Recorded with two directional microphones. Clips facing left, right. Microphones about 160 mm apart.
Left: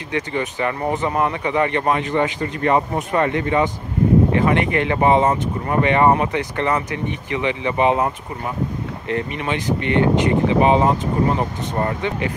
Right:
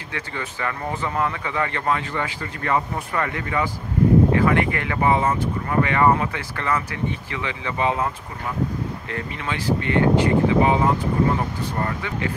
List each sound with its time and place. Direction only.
0.1 s speech: 20° left (ahead or behind)
9.1 s speech: 20° left (ahead or behind)